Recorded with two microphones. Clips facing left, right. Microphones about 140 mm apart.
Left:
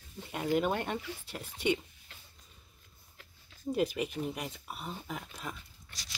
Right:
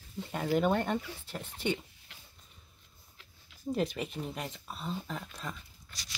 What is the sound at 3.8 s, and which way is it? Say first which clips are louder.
Speech: left 3 dB; 5° left (ahead or behind).